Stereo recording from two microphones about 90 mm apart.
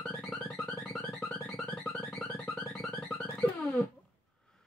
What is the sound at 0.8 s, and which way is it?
Music, 10° left (ahead or behind).